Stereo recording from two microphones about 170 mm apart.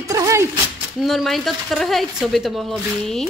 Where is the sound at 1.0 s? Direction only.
Centre (ahead or behind).